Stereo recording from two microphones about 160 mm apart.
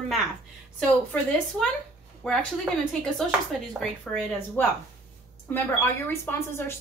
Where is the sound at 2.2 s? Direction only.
5° left (ahead or behind).